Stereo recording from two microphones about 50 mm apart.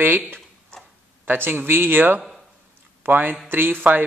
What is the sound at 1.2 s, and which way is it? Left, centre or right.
A man's voice, right.